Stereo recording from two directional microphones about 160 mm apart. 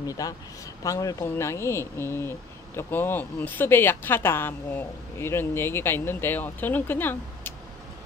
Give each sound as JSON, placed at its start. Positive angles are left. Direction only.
{"t": 0.0, "sound": "a man's voice", "side_deg": 20}